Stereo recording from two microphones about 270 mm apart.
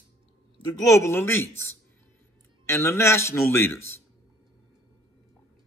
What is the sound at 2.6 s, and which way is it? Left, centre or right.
A man's voice, centre.